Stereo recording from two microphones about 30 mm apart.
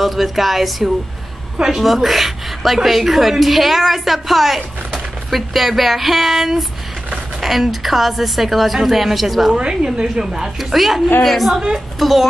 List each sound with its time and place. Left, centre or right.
0.0 s a woman's voice: centre
1.6 s a woman's voice: centre
1.9 s a woman's voice: centre
9.6 s a woman's voice: right
10.6 s a woman's voice: centre